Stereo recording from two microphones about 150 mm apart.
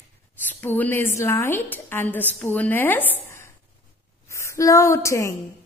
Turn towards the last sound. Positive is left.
turn(degrees=20)  # may be behind; listen again after turning